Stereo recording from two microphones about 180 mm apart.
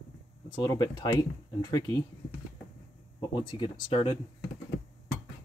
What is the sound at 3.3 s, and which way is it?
Speech, 25° left (ahead or behind).